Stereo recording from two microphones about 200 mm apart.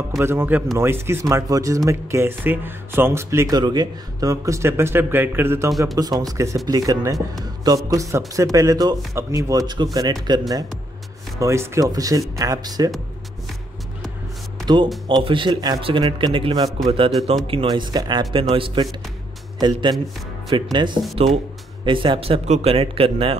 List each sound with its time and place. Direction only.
0.2 s a man's voice: 10° right (ahead or behind)
15.0 s a man's voice: 25° right (ahead or behind)